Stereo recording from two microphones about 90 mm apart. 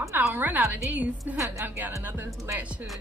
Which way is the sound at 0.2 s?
20° right (ahead or behind).